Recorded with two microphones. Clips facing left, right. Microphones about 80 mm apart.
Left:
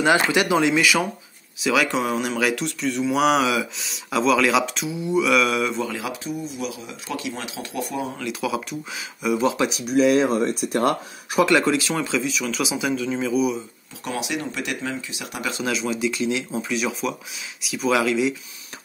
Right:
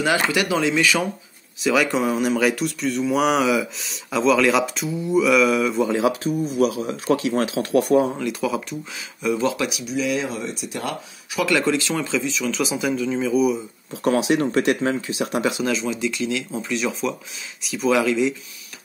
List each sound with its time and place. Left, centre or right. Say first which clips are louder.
0.0 s speech: left 2 dB; left
0.7 s speech: even; centre
5.9 s speech: right 9 dB; right
6.2 s speech: right 9 dB; right
8.3 s speech: right 2 dB; centre
9.2 s speech: left 1 dB; centre
9.8 s speech: left 9 dB; left
11.3 s speech: left 3 dB; left
11.6 s speech: even; centre
14.0 s speech: right 9 dB; right
15.6 s speech: right 1 dB; centre
16.2 s speech: left 1 dB; centre
16.5 s speech: even; centre